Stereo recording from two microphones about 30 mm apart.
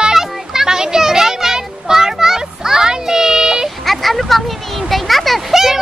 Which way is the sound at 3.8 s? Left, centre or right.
Centre.